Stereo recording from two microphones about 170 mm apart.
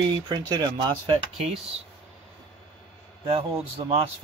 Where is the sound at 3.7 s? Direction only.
35° right (ahead or behind).